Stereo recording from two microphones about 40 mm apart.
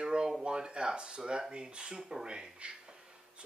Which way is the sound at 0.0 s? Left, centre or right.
Centre.